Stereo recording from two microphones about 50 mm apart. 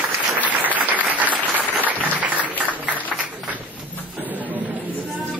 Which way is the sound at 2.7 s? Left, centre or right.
Right.